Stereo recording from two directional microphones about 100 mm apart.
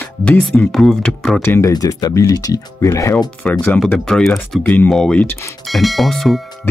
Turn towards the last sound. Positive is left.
turn(degrees=0)  # may be behind; listen again after turning